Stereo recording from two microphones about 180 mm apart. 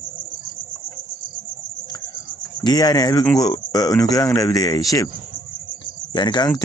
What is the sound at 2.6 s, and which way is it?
Speech, 20° left (ahead or behind).